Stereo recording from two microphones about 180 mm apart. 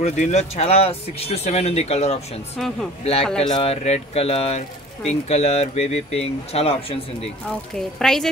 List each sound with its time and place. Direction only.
0.0 s speech: 40° left (ahead or behind)
7.4 s a woman's voice: centre (ahead or behind)